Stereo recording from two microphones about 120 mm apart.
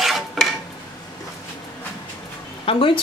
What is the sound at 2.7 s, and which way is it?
Speech, 45° left (ahead or behind).